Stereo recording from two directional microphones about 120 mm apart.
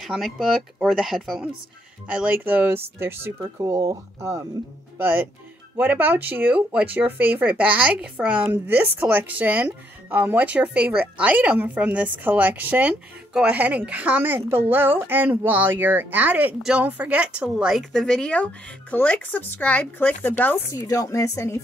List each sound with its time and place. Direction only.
0.0 s speech: centre (ahead or behind); by 20.6 s 15° left (ahead or behind)
20.8 s speech: 30° left (ahead or behind)